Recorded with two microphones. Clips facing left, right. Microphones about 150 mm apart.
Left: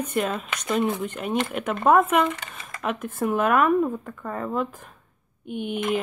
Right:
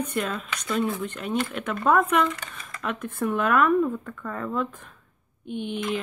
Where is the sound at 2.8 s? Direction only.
10° left (ahead or behind).